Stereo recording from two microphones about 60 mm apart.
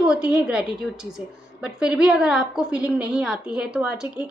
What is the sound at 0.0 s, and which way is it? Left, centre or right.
A woman's voice, centre.